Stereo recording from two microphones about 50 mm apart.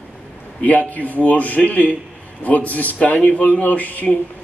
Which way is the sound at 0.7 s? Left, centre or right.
Left.